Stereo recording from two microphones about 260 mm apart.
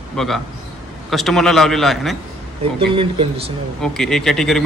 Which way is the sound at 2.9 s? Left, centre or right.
Right.